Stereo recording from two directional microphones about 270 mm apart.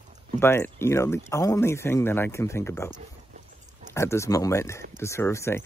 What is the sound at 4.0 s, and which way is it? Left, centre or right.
Speech, centre.